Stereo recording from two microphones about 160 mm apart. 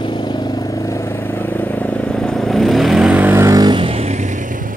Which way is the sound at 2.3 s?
Centre (ahead or behind).